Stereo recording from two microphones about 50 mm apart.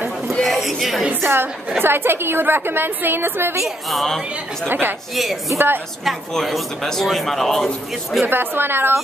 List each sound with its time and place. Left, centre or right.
0.3 s a sound: centre
1.2 s a woman's voice: right
3.6 s a man's voice: centre
4.6 s a woman's voice: right
5.1 s a man's voice: centre
8.3 s a woman's voice: right